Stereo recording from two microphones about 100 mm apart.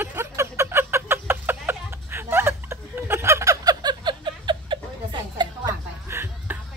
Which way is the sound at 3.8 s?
50° right (ahead or behind).